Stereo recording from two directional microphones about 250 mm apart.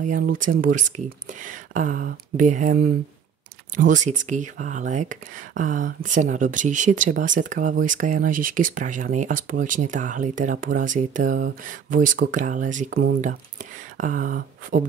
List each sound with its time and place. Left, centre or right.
0.0 s speech: right